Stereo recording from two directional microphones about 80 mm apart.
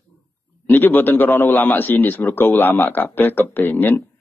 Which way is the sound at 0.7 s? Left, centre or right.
Left.